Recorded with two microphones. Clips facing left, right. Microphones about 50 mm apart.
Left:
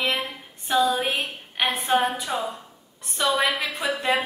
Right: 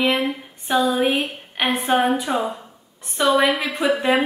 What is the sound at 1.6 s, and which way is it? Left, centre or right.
Speech, centre.